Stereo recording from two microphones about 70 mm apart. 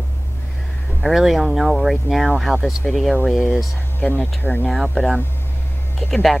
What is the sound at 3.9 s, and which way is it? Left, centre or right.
Speech, left.